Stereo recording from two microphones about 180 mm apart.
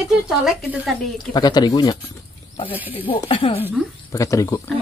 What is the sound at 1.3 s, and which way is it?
Speech, 20° left (ahead or behind).